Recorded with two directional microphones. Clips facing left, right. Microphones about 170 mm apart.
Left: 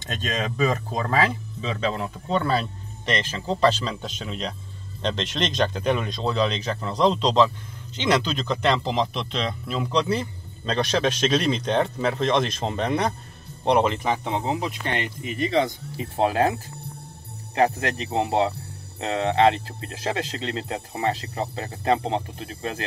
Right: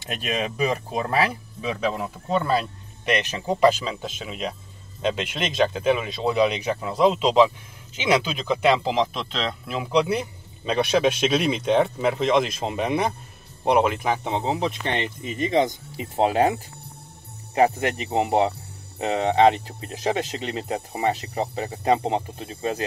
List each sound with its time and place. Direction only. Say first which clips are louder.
0.0 s speech: right 1 dB; 10° right (ahead or behind)
14.3 s speech: right 2 dB; 25° right (ahead or behind)